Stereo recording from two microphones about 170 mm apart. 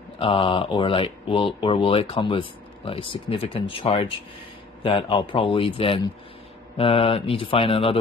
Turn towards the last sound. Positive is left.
turn(degrees=35)  # may be behind; listen again after turning